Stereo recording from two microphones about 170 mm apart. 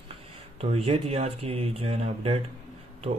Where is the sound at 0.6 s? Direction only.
35° right (ahead or behind).